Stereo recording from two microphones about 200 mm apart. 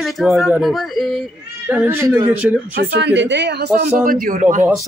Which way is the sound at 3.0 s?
60° right (ahead or behind).